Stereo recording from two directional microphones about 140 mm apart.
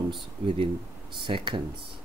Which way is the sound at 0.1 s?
40° right (ahead or behind).